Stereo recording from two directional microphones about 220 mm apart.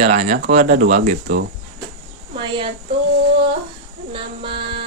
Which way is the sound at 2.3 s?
20° right (ahead or behind).